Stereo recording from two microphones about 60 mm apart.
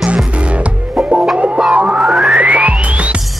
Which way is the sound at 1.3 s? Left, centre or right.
Centre.